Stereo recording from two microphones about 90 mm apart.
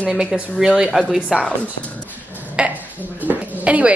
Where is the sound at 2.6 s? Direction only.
20° right (ahead or behind).